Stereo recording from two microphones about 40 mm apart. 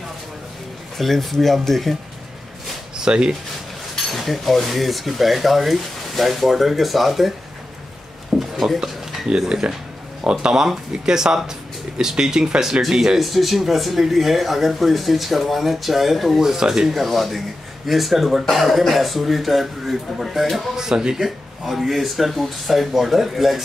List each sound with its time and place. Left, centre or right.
0.9 s speech: centre
3.0 s speech: centre
3.9 s speech: centre
8.4 s a sound: centre
9.5 s speech: centre
13.2 s speech: centre
16.8 s speech: centre
20.7 s speech: centre
21.2 s speech: centre